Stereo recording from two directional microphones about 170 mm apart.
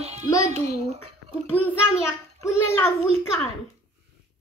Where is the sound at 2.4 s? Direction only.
15° left (ahead or behind).